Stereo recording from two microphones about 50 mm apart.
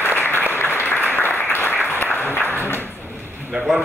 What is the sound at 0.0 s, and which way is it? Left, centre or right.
Applause, left.